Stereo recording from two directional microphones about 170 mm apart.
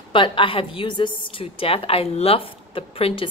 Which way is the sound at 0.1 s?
30° left (ahead or behind).